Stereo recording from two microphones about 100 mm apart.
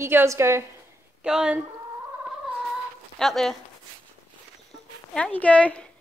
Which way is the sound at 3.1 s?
5° left (ahead or behind).